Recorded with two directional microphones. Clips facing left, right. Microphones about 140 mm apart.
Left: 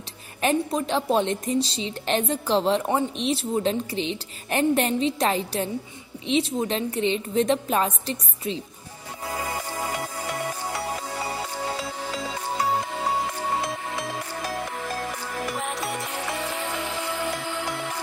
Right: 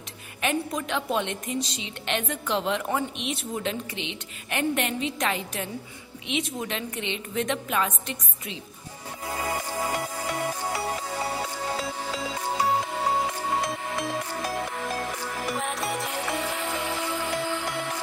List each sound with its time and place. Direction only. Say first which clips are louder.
0.4 s a woman's voice: left 4 dB; 35° left (ahead or behind)
13.6 s music: even; centre (ahead or behind)